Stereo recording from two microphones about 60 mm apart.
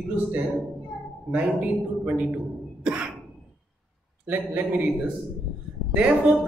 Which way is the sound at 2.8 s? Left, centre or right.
Centre.